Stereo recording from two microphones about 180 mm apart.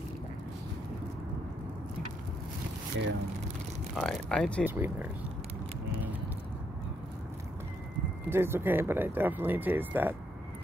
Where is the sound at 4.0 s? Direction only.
5° left (ahead or behind).